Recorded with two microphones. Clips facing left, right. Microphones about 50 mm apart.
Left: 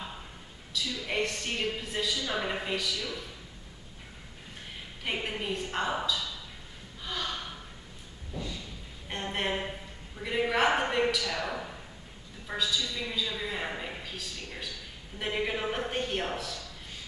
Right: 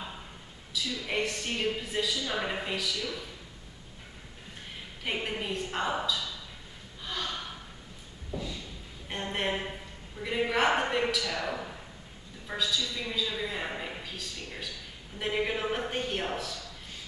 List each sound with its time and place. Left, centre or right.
0.7 s a woman's voice: centre
5.0 s a woman's voice: centre
7.1 s gasp: centre
8.3 s a sound: centre
10.1 s a woman's voice: centre